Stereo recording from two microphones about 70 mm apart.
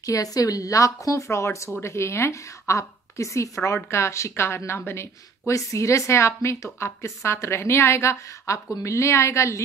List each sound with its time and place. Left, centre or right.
0.0 s a woman's voice: left
5.5 s speech: left